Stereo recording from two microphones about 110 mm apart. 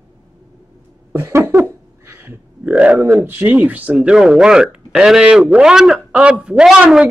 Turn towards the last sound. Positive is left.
turn(degrees=-10)  # may be behind; listen again after turning